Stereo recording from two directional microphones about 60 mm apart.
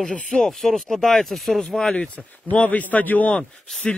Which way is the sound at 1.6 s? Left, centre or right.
Centre.